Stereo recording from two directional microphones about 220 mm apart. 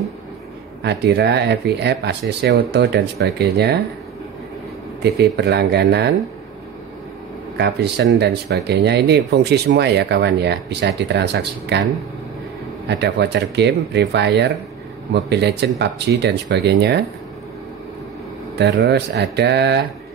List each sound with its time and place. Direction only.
0.8 s speech: 50° right (ahead or behind)
5.0 s speech: 50° right (ahead or behind)
7.5 s speech: 50° right (ahead or behind)
12.8 s speech: 50° right (ahead or behind)
18.6 s speech: 50° right (ahead or behind)